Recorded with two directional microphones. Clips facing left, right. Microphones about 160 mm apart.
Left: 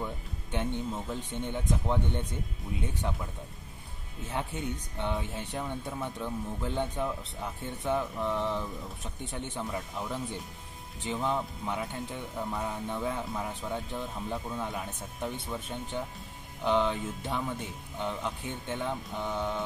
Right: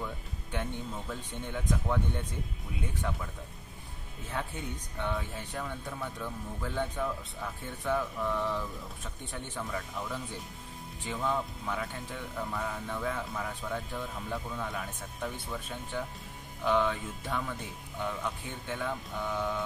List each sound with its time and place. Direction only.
0.0 s speech: 20° left (ahead or behind)
3.0 s speech: 20° left (ahead or behind)
4.4 s speech: 20° left (ahead or behind)